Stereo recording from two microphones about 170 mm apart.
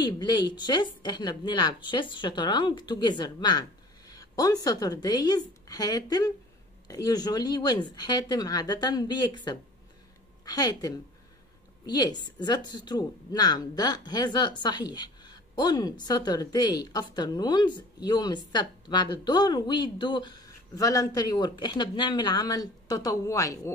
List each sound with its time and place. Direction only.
0.0 s speech: 25° left (ahead or behind)